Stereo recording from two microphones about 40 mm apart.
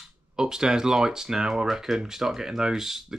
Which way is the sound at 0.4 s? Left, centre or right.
Centre.